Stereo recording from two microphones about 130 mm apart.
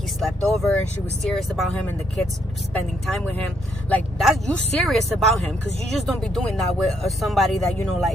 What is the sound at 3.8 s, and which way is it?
Speech, 10° left (ahead or behind).